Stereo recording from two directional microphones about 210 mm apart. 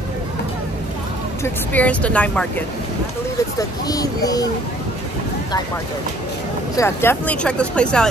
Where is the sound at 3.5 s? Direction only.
15° left (ahead or behind).